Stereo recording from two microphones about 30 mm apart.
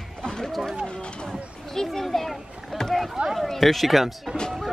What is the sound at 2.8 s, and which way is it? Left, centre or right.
Rowboat, left.